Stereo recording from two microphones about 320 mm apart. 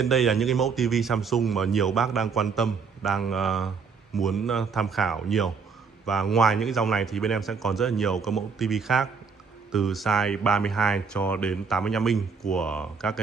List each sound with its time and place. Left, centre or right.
0.0 s speech: centre